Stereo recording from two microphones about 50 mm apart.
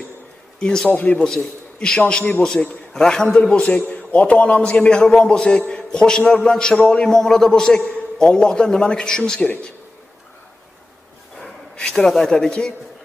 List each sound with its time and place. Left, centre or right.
0.6 s a man's voice: centre
3.5 s a man's voice: left
11.7 s a sound: centre
12.0 s a man's voice: centre